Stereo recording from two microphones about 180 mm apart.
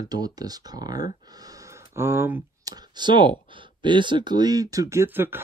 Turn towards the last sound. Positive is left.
turn(degrees=-10)  # may be behind; listen again after turning